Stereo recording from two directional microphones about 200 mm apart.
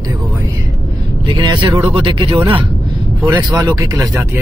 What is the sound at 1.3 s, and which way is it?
Speech, 25° right (ahead or behind).